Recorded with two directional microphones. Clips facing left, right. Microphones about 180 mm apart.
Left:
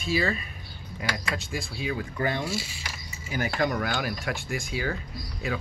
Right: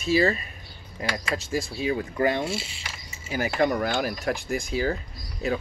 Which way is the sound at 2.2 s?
25° right (ahead or behind).